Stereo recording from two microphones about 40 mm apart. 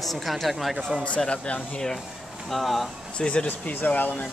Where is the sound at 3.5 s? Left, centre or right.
Left.